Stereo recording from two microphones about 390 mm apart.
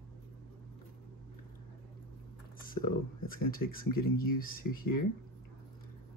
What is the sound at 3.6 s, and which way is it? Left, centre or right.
Speech, left.